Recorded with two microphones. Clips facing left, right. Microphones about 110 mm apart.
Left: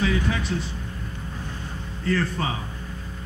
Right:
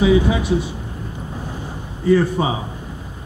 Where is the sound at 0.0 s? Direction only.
15° right (ahead or behind).